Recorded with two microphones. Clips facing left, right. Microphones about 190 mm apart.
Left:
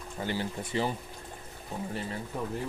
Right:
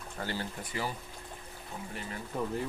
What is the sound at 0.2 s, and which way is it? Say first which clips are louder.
Speech: left 4 dB; 20° left (ahead or behind).